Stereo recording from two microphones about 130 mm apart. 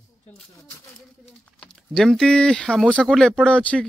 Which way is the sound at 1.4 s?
5° left (ahead or behind).